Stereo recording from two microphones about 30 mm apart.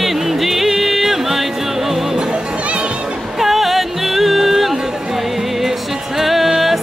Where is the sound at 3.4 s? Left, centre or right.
Centre.